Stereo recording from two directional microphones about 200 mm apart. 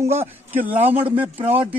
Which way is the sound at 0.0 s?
10° right (ahead or behind).